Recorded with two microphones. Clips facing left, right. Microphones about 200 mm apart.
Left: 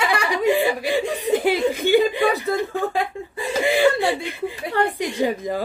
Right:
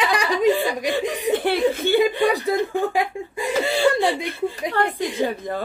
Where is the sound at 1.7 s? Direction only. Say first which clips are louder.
Left 3 dB; 15° left (ahead or behind).